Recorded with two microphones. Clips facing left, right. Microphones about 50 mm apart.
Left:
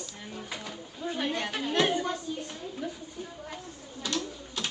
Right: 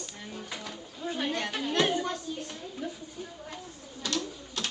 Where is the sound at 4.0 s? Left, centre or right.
Centre.